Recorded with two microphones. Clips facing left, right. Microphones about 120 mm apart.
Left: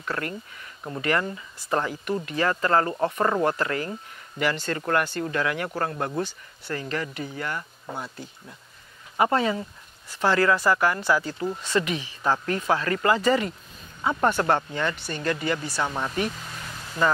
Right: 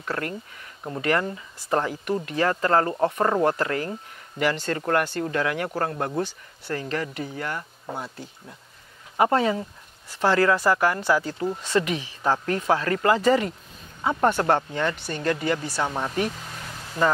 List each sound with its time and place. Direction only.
0.0 s speech: 40° right (ahead or behind)
7.8 s speech: 30° right (ahead or behind)
9.2 s speech: 40° right (ahead or behind)
11.0 s speech: 30° right (ahead or behind)
11.8 s a woman's voice: 50° right (ahead or behind)
12.2 s speech: 40° right (ahead or behind)